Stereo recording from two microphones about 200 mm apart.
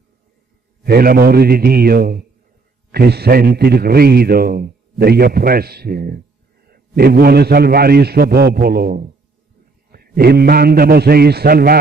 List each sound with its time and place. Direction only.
0.8 s a man's voice: 50° right (ahead or behind)